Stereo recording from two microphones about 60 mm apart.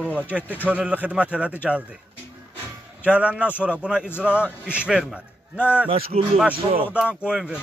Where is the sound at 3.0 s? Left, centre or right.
Right.